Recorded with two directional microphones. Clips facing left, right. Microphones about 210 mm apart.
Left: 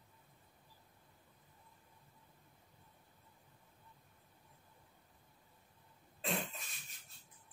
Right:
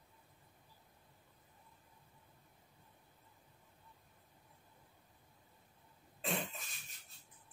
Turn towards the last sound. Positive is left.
turn(degrees=0)  # may be behind; listen again after turning